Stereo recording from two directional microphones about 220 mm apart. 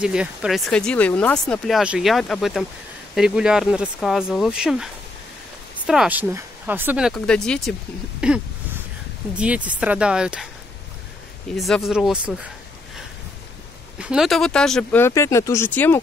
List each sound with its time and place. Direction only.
0.0 s speech: 5° right (ahead or behind)
5.9 s speech: 5° right (ahead or behind)
11.5 s speech: centre (ahead or behind)
13.9 s speech: 5° right (ahead or behind)